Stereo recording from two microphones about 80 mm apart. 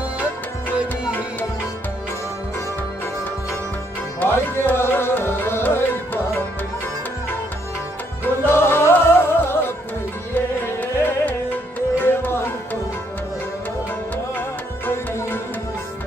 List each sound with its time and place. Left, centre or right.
4.2 s music: left
8.5 s music: left
14.9 s music: left